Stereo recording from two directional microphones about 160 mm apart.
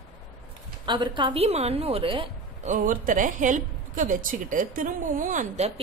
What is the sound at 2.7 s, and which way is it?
A woman's voice, 55° right (ahead or behind).